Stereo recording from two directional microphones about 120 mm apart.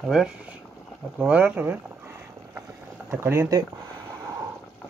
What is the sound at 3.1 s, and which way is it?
Speech, 15° right (ahead or behind).